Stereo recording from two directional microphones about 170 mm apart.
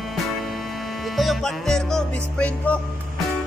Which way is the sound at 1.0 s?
Centre (ahead or behind).